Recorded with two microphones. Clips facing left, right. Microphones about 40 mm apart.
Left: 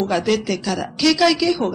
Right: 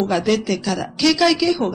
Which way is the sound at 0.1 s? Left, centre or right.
Centre.